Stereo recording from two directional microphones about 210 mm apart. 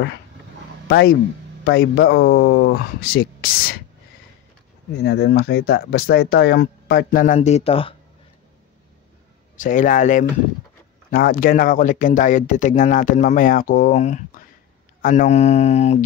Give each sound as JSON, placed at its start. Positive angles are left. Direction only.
{"t": 0.8, "sound": "speech", "side_deg": 50}
{"t": 5.0, "sound": "speech", "side_deg": 50}
{"t": 9.6, "sound": "speech", "side_deg": 40}